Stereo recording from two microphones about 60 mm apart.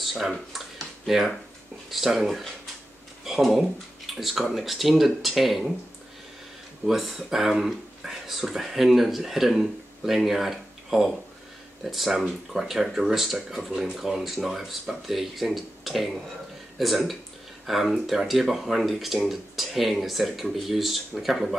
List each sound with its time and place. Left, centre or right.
0.0 s a sound: centre
1.9 s speech: centre
6.9 s speech: centre